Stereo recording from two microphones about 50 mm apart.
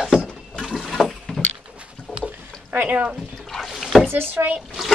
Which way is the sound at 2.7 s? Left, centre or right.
Right.